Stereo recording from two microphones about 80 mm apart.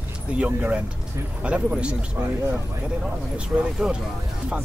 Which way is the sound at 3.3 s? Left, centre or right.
Centre.